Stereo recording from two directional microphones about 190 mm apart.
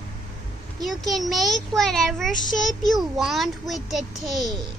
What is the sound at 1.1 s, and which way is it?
A child's voice, centre (ahead or behind).